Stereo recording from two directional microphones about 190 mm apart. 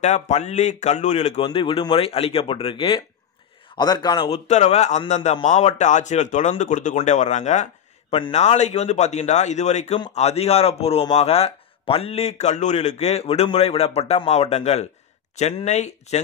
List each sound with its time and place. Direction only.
0.0 s speech: 35° left (ahead or behind)
4.5 s a man's voice: 35° left (ahead or behind)